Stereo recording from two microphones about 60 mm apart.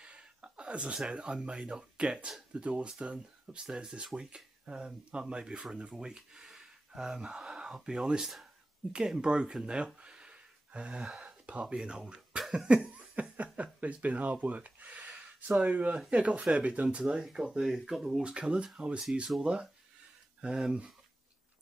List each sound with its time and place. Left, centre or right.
0.0 s speech: centre
3.6 s speech: centre
11.2 s a sound: centre
11.6 s speech: centre
12.4 s a sound: centre
15.6 s speech: right
17.1 s speech: centre
18.2 s speech: centre